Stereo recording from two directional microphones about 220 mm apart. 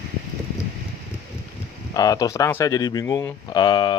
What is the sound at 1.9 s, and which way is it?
Speech, 15° left (ahead or behind).